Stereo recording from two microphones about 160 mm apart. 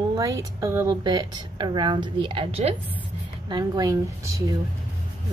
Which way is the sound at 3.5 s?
25° right (ahead or behind).